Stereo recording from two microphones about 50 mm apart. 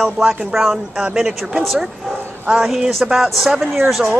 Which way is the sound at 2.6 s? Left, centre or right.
Centre.